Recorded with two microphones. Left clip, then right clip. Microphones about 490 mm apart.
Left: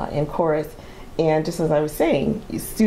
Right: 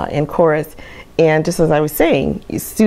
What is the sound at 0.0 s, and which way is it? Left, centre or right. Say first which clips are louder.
A woman's voice: right 8 dB; right.